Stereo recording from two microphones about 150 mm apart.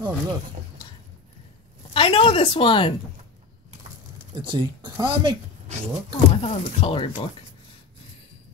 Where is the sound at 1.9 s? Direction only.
35° left (ahead or behind).